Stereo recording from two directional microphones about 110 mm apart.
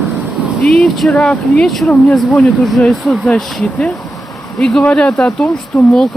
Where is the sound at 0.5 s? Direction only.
5° left (ahead or behind).